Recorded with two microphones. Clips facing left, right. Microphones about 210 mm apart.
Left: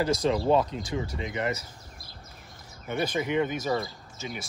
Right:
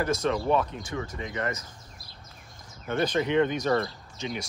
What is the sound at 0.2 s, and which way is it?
Speech, 30° left (ahead or behind).